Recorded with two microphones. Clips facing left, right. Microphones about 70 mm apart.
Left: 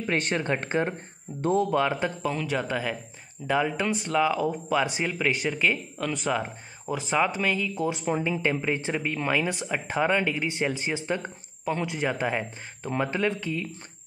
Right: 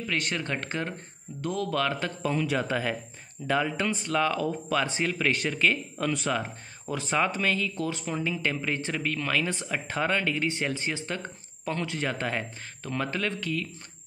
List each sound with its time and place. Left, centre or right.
0.0 s speech: left; by 2.1 s centre
2.2 s speech: centre; by 13.7 s left